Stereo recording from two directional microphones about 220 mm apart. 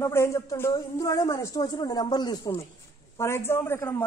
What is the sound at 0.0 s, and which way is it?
Speech, 10° left (ahead or behind).